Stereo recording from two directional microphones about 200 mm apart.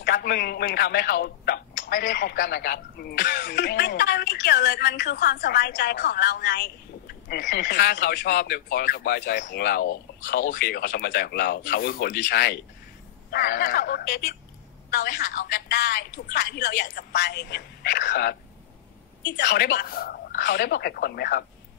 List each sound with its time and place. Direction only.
0.0 s a man's voice: 50° left (ahead or behind)